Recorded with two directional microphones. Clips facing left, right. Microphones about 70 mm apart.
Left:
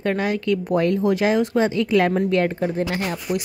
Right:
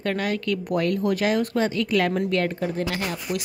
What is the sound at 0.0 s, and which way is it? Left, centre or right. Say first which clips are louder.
A woman's voice: left 3 dB; centre.